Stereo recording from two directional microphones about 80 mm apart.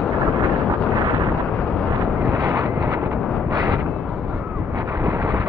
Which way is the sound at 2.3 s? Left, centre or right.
Right.